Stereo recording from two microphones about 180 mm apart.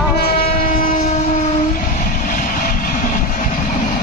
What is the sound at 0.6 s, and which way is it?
Train, 50° left (ahead or behind).